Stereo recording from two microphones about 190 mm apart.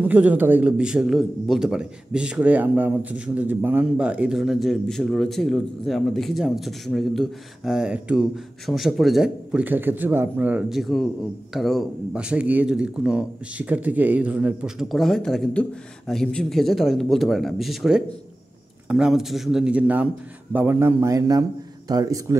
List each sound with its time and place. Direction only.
0.0 s a man's voice: 10° right (ahead or behind)